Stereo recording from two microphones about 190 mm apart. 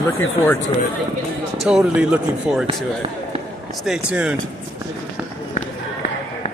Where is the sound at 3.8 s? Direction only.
5° right (ahead or behind).